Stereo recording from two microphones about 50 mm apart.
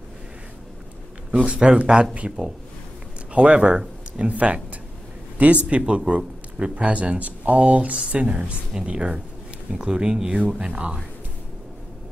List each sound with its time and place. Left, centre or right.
1.3 s speech: right
3.3 s speech: right
5.7 s speech: right